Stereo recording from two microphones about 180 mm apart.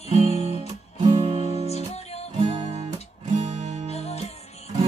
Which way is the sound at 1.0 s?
35° right (ahead or behind).